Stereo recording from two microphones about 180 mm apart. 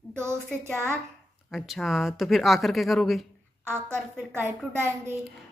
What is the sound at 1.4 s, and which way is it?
Speech, centre (ahead or behind).